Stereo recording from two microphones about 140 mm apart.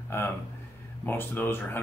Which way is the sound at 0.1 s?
15° left (ahead or behind).